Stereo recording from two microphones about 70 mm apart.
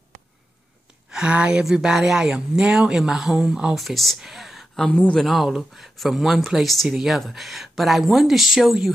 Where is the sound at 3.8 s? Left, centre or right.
Centre.